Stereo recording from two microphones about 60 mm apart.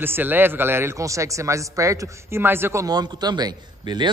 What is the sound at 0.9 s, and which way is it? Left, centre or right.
Speech, right.